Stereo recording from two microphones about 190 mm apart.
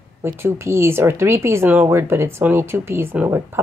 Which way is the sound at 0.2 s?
15° right (ahead or behind).